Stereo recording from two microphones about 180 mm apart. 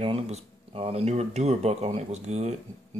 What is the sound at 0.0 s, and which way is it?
Speech, 35° right (ahead or behind).